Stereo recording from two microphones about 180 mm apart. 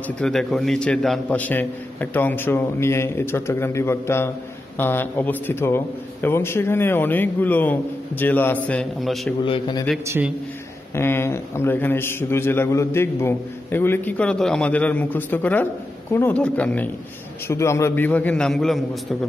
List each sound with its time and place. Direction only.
0.2 s a man's voice: centre (ahead or behind)
9.4 s a man's voice: 25° left (ahead or behind)
10.0 s a man's voice: 15° right (ahead or behind)
11.0 s a man's voice: 15° left (ahead or behind)